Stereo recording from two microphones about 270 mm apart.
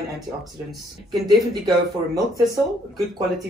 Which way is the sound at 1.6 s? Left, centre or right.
Centre.